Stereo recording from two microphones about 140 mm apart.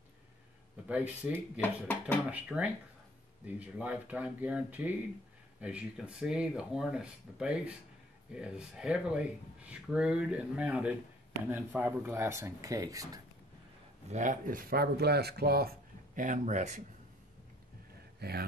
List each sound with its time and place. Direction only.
0.8 s speech: 10° right (ahead or behind)
1.6 s speech: 15° left (ahead or behind)
2.3 s speech: 10° right (ahead or behind); by 13.2 s 25° right (ahead or behind)
14.1 s speech: 65° right (ahead or behind); by 15.7 s 90° right
16.2 s speech: 60° right (ahead or behind)